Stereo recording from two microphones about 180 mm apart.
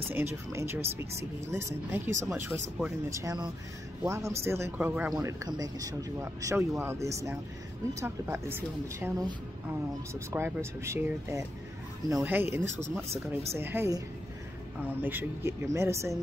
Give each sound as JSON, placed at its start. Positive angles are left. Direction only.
{"t": 0.1, "sound": "speech", "side_deg": -15}